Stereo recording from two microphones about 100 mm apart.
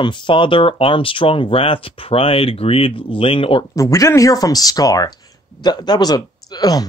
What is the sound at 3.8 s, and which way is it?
Speech, 30° left (ahead or behind).